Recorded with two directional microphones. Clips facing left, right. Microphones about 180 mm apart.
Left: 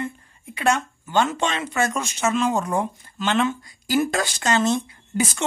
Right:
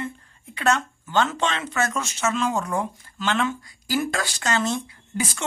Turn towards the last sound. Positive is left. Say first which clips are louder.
# left 4 dB
turn(degrees=20)  # may be behind; listen again after turning